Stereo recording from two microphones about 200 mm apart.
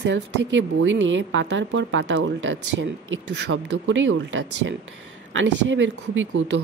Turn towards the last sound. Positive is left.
turn(degrees=-70)  # may be behind; listen again after turning